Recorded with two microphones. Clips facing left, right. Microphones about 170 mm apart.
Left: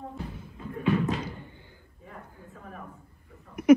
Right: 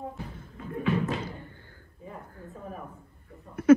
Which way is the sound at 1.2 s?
15° left (ahead or behind).